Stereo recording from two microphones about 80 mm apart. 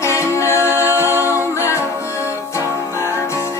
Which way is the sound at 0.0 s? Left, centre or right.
Left.